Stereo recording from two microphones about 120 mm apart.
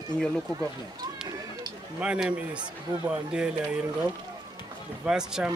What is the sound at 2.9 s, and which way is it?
Speech, 30° right (ahead or behind).